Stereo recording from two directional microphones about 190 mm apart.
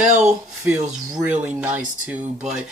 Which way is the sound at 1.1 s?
10° right (ahead or behind).